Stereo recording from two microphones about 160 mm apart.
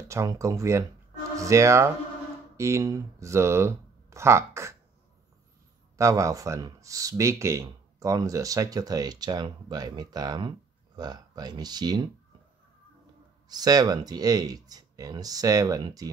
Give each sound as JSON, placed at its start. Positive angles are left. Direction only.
{"t": 0.1, "sound": "speech", "side_deg": -20}
{"t": 5.9, "sound": "speech", "side_deg": -20}
{"t": 13.5, "sound": "speech", "side_deg": -25}